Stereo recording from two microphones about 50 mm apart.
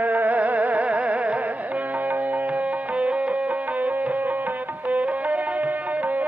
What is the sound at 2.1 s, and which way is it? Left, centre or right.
Music, right.